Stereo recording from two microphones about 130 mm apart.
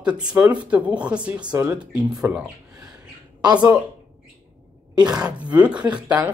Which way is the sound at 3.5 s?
30° right (ahead or behind).